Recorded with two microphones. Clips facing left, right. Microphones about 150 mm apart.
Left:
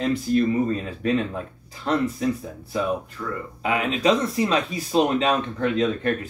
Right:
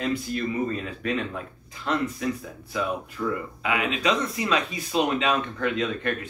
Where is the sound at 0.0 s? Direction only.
35° left (ahead or behind).